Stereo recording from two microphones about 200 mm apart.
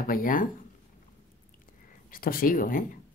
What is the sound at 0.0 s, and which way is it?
Speech, 45° left (ahead or behind).